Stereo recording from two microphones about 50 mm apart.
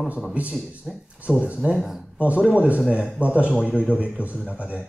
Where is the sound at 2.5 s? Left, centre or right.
Right.